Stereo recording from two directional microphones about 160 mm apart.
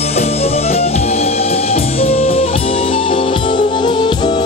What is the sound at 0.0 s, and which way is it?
Music, 40° left (ahead or behind).